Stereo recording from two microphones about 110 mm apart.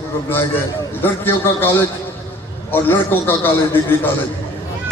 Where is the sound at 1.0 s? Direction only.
20° left (ahead or behind).